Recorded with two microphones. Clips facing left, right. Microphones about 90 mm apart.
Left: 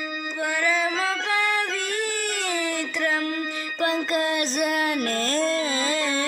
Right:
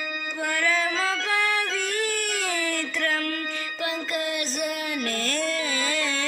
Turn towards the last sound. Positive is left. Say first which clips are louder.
# left 3 dB
turn(degrees=25)  # may be behind; listen again after turning